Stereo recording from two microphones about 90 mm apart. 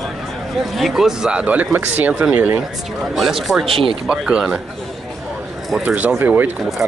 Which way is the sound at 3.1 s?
5° right (ahead or behind).